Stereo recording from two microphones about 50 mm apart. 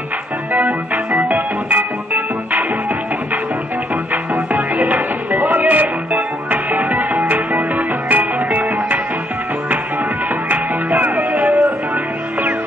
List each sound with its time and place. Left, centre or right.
0.5 s organ: right
3.9 s music: right
10.5 s music: right